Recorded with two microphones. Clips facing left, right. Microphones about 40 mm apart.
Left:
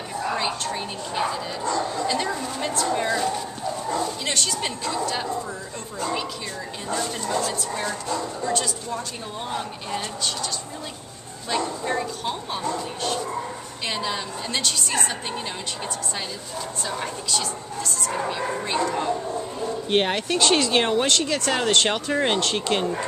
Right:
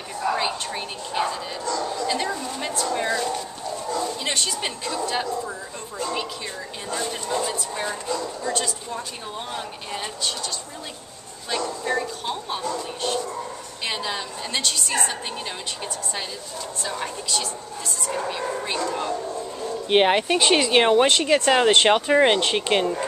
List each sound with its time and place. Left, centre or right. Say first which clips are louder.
0.1 s a sound: right 2 dB; centre
1.6 s a sound: left 2 dB; left
2.0 s speech: even; centre
4.0 s speech: even; centre
6.9 s speech: left 1 dB; centre
8.1 s speech: left 1 dB; centre
8.5 s speech: left 1 dB; centre
11.8 s speech: even; centre
13.8 s speech: even; centre
16.8 s speech: right 1 dB; centre
19.9 s speech: right 5 dB; centre